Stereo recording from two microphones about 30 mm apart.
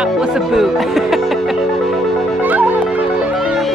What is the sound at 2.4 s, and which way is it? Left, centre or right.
Music, right.